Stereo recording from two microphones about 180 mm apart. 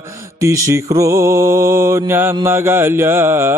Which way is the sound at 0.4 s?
15° right (ahead or behind).